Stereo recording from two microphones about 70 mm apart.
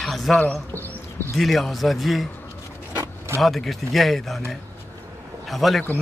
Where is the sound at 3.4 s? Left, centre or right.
Centre.